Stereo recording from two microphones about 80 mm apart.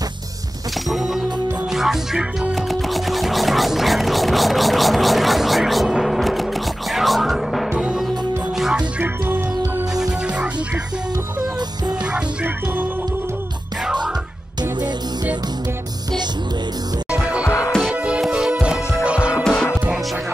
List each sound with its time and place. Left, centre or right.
0.8 s music: centre
7.7 s music: centre
9.9 s music: centre
17.4 s music: left
17.9 s music: centre
19.4 s music: centre